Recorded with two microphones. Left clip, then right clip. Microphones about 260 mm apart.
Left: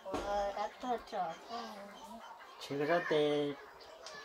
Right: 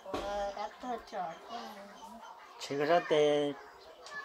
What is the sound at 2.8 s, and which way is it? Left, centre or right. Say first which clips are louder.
Speech: right 4 dB; right.